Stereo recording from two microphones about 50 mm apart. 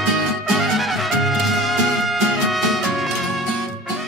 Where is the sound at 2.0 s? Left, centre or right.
Centre.